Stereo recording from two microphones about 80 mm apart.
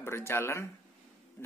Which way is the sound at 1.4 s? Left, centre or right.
Left.